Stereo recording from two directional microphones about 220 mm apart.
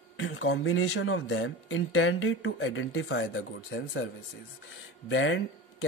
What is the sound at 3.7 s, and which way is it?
Speech, 50° left (ahead or behind).